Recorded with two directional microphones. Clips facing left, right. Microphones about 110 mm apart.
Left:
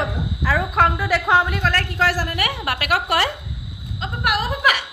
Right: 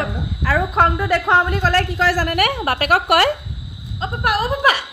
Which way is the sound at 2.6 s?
40° right (ahead or behind).